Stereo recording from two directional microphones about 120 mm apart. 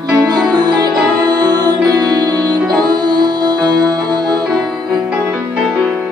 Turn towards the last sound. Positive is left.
turn(degrees=0)  # may be behind; listen again after turning